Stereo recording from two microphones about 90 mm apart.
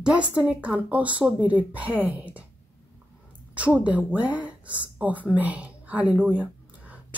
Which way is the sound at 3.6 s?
15° right (ahead or behind).